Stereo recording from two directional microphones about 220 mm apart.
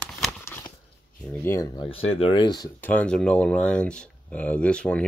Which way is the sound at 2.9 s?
5° left (ahead or behind).